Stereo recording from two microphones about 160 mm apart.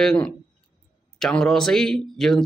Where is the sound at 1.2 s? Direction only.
5° left (ahead or behind).